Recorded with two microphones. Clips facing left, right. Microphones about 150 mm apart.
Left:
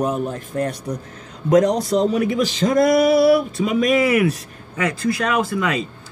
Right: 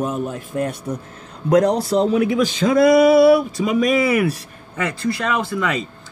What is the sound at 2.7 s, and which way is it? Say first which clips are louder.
A man's voice: right 3 dB; centre (ahead or behind).